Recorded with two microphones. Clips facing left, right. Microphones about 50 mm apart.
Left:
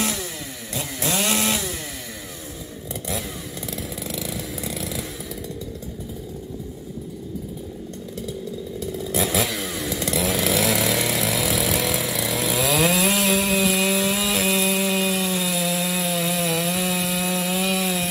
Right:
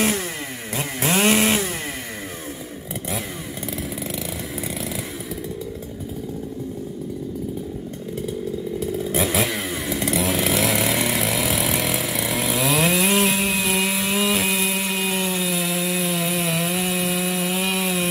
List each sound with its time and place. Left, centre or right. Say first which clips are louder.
0.7 s chainsaw: right 4 dB; right
4.1 s chainsaw: right 1 dB; centre
8.7 s chainsaw: right 2 dB; right
9.2 s chainsaw: even; centre